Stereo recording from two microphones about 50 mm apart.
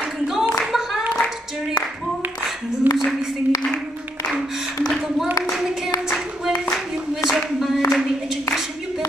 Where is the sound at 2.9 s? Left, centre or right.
Right.